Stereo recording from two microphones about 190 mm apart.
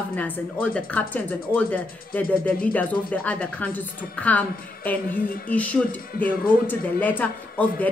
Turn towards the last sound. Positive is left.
turn(degrees=10)  # may be behind; listen again after turning